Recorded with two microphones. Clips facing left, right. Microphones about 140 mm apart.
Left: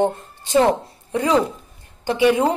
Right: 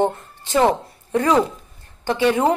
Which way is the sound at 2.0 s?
15° left (ahead or behind).